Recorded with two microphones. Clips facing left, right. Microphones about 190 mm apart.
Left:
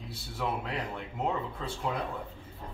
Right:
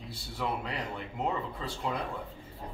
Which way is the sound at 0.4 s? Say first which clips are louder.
Left 1 dB; centre (ahead or behind).